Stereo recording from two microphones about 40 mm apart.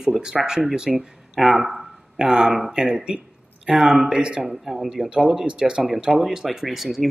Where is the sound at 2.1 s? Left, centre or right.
Centre.